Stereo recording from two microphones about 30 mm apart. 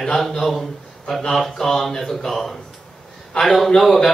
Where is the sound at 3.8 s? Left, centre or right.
Centre.